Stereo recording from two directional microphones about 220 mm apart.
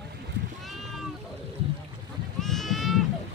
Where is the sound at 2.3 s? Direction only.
Centre (ahead or behind).